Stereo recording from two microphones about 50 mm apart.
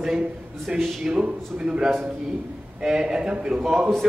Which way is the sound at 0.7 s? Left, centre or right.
Right.